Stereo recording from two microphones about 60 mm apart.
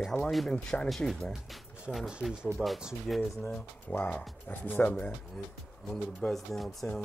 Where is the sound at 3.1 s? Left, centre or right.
Centre.